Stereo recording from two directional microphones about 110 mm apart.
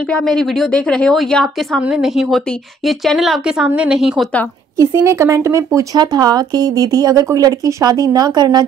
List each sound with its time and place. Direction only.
0.1 s a woman's voice: 5° left (ahead or behind)
1.8 s a woman's voice: 10° right (ahead or behind)
4.7 s speech: 25° right (ahead or behind)